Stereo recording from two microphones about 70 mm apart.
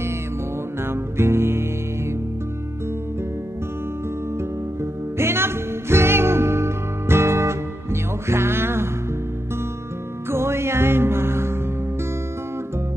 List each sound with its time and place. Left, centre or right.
0.8 s music: right
5.1 s music: right
10.3 s music: right